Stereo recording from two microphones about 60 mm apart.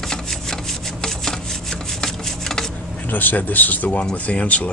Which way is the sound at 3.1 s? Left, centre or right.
Left.